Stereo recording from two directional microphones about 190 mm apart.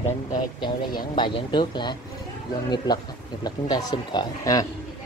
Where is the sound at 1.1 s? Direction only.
25° left (ahead or behind).